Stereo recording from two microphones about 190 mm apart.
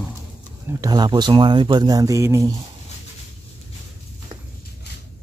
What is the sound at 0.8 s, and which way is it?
Speech, 20° right (ahead or behind).